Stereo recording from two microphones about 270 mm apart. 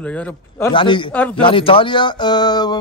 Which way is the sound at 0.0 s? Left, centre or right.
Centre.